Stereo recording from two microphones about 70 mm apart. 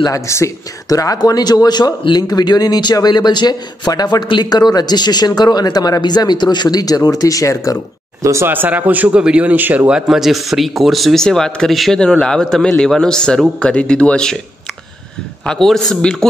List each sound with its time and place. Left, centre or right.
0.1 s speech: left
8.2 s speech: right
8.5 s speech: right
9.8 s a man's voice: centre
15.4 s a man's voice: centre